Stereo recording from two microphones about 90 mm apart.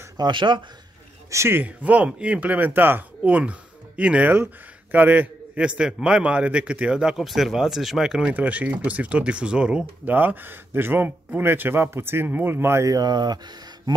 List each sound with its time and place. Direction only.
0.2 s speech: 60° right (ahead or behind)
1.3 s a man's voice: 30° right (ahead or behind); by 13.4 s 50° right (ahead or behind)